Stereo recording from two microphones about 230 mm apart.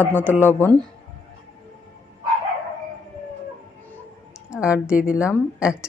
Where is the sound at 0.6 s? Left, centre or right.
Centre.